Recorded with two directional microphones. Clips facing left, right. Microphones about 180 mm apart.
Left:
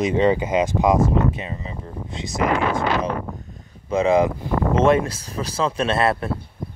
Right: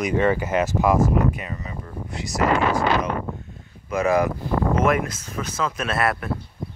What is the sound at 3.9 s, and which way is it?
Speech, 25° left (ahead or behind).